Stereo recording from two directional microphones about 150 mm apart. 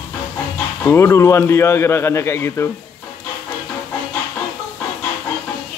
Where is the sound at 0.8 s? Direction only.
15° left (ahead or behind).